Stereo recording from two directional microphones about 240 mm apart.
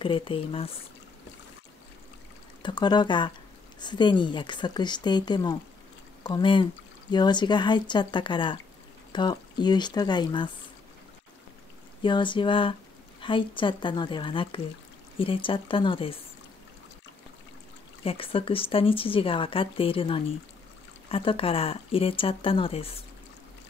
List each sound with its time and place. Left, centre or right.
0.0 s speech: left
2.6 s speech: centre
12.0 s speech: centre
18.0 s speech: left